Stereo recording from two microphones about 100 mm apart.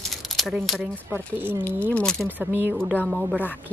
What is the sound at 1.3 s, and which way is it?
Speech, 20° right (ahead or behind).